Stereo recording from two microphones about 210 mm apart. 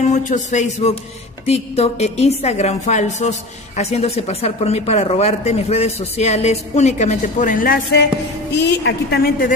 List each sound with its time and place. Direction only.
0.1 s a woman's voice: 35° left (ahead or behind)